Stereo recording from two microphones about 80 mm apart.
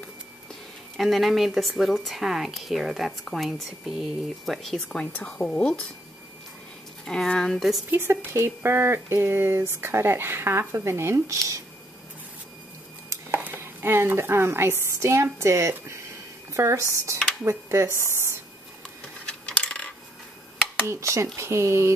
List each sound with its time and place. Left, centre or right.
0.9 s a woman's voice: centre
4.8 s speech: centre
7.1 s speech: centre
7.9 s speech: right
13.1 s a sound: right
15.3 s speech: right
19.2 s computer keyboard: centre
20.8 s speech: right